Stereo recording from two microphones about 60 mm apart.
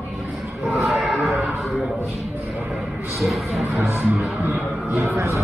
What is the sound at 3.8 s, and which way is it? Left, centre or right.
Speech, right.